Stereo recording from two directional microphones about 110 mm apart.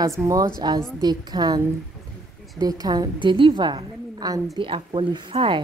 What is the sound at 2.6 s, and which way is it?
A woman's voice, 35° right (ahead or behind).